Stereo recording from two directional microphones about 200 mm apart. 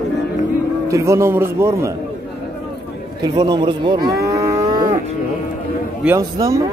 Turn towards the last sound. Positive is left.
turn(degrees=-15)  # may be behind; listen again after turning